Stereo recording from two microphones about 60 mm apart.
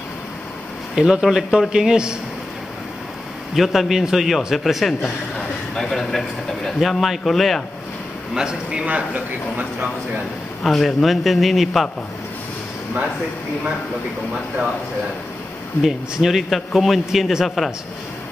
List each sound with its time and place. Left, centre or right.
0.9 s speech: centre
3.5 s speech: centre
5.9 s a man's voice: centre
6.7 s speech: centre
8.4 s a man's voice: centre
10.6 s speech: centre
15.8 s speech: centre